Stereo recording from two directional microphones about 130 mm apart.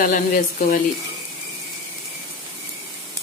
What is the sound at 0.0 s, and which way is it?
Speech, 90° left.